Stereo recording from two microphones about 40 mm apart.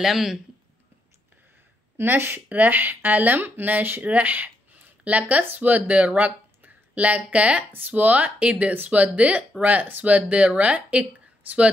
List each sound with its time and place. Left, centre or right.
0.0 s speech: centre
2.0 s a woman's voice: right
2.5 s speech: right
4.0 s speech: right
7.7 s speech: right